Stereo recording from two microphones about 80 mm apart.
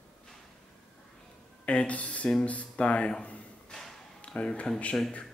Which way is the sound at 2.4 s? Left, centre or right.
Centre.